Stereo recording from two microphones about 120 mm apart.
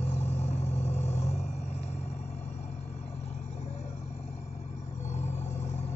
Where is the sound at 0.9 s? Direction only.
70° left (ahead or behind).